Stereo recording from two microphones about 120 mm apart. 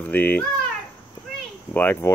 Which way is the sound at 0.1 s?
15° left (ahead or behind).